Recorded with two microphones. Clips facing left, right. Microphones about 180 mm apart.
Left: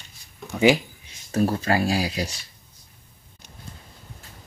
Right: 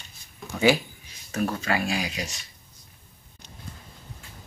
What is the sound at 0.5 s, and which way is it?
Speech, 20° left (ahead or behind).